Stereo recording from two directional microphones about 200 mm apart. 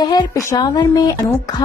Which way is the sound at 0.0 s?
20° left (ahead or behind).